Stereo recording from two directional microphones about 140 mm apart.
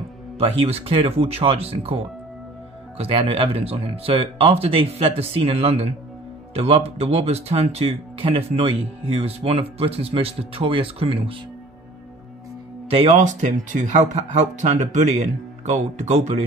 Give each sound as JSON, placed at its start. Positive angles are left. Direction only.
{"t": 0.4, "sound": "speech", "side_deg": -45}
{"t": 3.0, "sound": "speech", "side_deg": -40}
{"t": 12.9, "sound": "speech", "side_deg": -45}
{"t": 13.2, "sound": "speech", "side_deg": -65}